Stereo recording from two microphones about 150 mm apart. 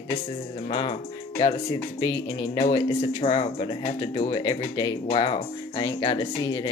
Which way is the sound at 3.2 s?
35° left (ahead or behind).